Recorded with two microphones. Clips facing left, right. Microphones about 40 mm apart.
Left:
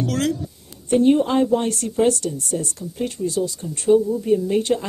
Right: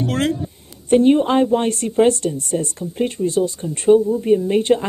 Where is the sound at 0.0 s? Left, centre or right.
Right.